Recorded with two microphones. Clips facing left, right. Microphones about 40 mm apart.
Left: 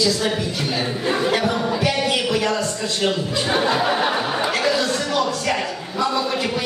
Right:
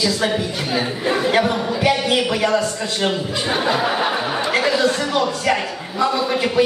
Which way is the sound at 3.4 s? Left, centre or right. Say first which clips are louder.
Even; centre.